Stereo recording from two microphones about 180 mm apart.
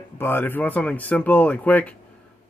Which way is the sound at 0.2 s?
10° left (ahead or behind).